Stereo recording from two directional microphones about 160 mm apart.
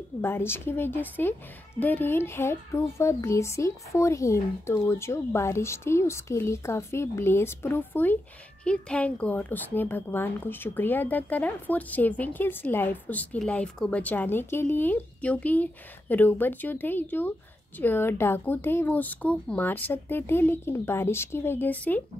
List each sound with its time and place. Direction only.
0.2 s a woman's voice: 15° left (ahead or behind)